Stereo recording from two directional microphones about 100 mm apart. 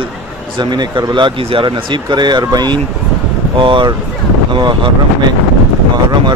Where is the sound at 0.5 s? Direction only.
50° right (ahead or behind).